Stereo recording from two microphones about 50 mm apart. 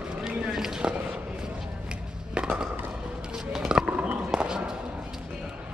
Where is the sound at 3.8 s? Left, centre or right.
Right.